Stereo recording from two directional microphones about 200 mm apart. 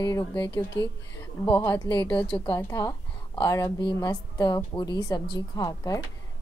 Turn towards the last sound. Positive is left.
turn(degrees=15)  # may be behind; listen again after turning